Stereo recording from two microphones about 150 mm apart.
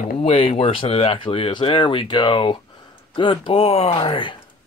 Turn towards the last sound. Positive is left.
turn(degrees=35)  # may be behind; listen again after turning